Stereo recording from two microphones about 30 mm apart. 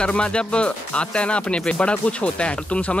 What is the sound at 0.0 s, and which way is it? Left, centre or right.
Speech, left.